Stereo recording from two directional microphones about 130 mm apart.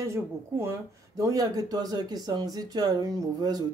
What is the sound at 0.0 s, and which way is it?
Speech, 20° right (ahead or behind).